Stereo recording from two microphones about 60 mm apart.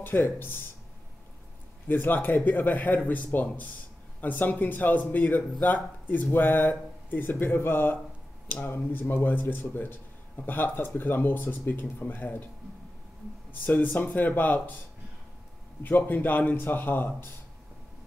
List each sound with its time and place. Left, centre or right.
0.0 s a man's voice: left
1.9 s a man's voice: left
13.5 s speech: left
15.8 s a man's voice: left